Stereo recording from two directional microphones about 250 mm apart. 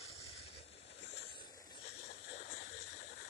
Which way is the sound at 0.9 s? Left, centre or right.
Left.